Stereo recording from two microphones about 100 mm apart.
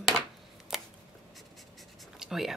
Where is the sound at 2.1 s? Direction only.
5° right (ahead or behind).